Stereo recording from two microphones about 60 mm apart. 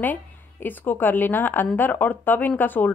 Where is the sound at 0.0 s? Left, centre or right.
Left.